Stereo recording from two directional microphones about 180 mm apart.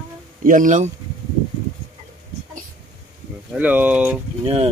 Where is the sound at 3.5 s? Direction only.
10° right (ahead or behind).